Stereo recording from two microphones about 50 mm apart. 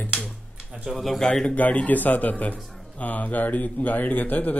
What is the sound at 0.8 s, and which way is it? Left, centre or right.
Speech, centre.